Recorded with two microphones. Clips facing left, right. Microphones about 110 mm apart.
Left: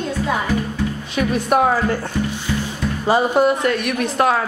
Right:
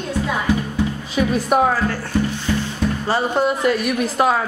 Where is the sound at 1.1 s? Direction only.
Centre (ahead or behind).